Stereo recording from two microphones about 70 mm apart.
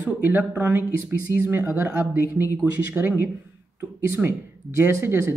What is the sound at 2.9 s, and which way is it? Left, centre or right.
Speech, right.